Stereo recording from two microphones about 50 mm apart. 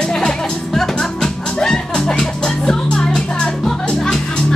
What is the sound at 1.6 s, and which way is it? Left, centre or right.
Music, centre.